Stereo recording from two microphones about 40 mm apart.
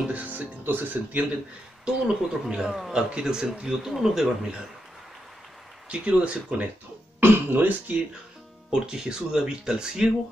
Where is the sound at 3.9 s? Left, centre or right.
Centre.